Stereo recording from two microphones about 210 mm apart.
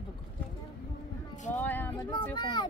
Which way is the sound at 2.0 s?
20° left (ahead or behind).